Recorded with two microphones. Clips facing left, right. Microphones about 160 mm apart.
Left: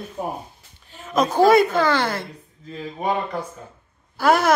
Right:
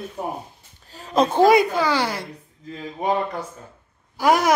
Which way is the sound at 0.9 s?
35° right (ahead or behind).